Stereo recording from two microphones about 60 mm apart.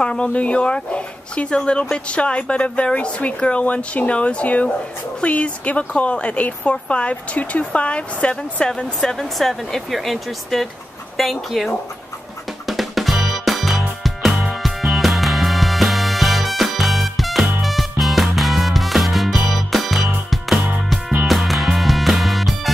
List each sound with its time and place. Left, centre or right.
0.0 s speech: centre
12.6 s music: centre